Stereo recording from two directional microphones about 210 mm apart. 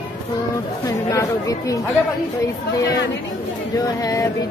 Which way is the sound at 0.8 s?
15° left (ahead or behind).